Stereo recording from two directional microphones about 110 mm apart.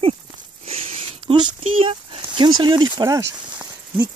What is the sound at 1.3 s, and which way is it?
Speech, 50° right (ahead or behind).